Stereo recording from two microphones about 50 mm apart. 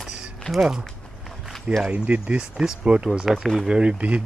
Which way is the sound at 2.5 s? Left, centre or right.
Centre.